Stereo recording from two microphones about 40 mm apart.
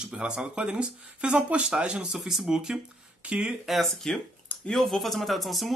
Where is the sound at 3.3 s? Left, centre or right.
Right.